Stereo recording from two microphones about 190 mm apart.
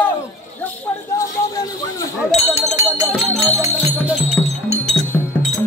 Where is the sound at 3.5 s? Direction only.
10° right (ahead or behind).